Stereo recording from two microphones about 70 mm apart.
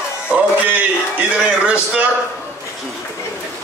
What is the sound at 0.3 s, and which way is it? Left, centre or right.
Music, right.